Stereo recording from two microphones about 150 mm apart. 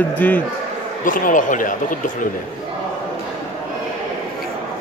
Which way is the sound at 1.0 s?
65° left (ahead or behind).